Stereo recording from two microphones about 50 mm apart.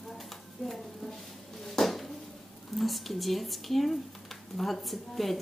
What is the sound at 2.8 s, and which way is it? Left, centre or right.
Speech, centre.